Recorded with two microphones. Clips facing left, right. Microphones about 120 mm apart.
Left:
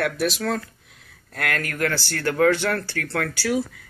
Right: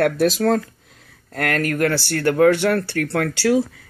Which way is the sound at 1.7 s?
30° right (ahead or behind).